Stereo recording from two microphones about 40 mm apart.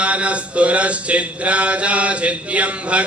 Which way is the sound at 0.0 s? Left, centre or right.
Right.